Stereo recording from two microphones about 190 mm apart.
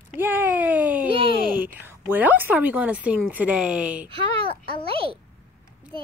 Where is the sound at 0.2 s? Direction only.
10° right (ahead or behind).